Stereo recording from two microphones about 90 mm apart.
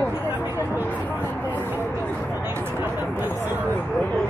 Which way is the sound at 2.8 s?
20° right (ahead or behind).